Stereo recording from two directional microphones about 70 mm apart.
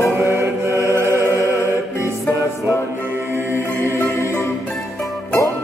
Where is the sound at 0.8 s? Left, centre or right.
Right.